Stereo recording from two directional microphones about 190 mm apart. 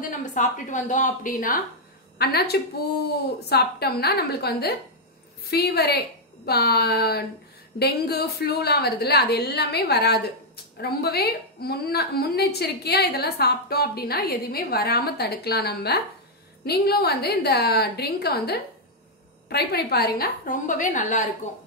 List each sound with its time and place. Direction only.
0.2 s a woman's voice: 40° left (ahead or behind)
2.1 s a woman's voice: 55° left (ahead or behind); by 21.3 s 40° left (ahead or behind)